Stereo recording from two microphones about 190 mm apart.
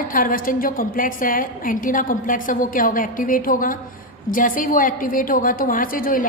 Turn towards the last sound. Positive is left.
turn(degrees=45)  # may be behind; listen again after turning